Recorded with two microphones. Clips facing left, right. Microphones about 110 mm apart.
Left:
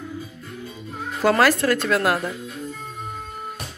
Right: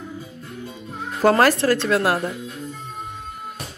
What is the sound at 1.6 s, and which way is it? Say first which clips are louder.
Speech: right 1 dB; 30° right (ahead or behind).